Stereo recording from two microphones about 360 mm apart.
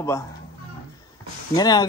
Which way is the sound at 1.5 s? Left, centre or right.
Centre.